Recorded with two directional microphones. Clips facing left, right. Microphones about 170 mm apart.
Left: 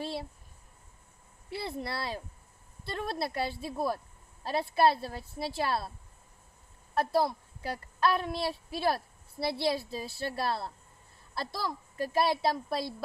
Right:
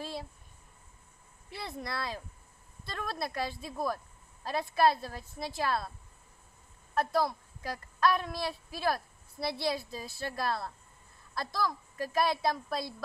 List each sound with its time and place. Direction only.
1.5 s a woman's voice: 30° left (ahead or behind)
7.0 s a woman's voice: 30° left (ahead or behind)